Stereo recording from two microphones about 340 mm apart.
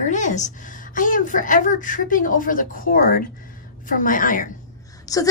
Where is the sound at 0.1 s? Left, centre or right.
Left.